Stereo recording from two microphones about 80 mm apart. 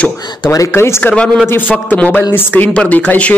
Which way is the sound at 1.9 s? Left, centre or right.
Centre.